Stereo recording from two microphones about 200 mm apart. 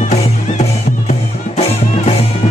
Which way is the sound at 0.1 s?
35° left (ahead or behind).